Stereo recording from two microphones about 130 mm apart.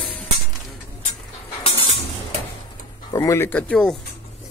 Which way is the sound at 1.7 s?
45° left (ahead or behind).